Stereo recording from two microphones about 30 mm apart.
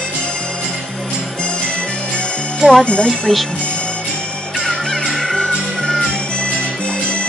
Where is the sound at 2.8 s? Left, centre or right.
Left.